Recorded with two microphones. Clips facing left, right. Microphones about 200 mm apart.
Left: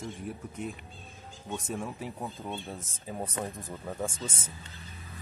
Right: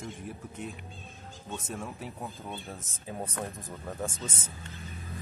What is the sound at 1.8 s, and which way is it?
Speech, centre (ahead or behind).